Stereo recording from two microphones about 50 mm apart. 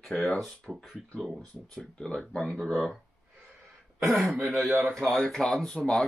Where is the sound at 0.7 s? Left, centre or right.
Centre.